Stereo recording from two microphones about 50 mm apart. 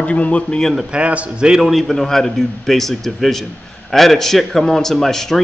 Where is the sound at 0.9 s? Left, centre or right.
Right.